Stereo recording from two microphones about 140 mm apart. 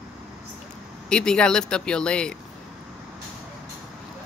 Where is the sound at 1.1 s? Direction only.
5° left (ahead or behind).